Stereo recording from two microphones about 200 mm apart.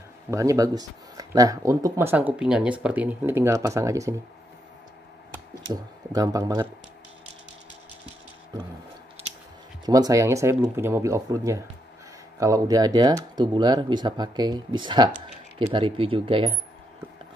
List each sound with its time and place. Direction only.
0.3 s speech: 15° right (ahead or behind)
5.7 s speech: 20° right (ahead or behind)
9.8 s speech: 20° right (ahead or behind)